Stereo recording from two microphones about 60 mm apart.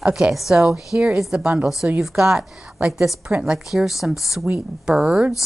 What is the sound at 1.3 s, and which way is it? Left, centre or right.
Speech, right.